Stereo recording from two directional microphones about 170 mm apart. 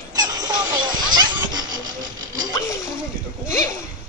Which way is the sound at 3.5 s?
15° left (ahead or behind).